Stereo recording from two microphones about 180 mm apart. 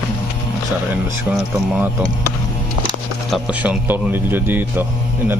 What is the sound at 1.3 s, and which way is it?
Speech, 5° right (ahead or behind).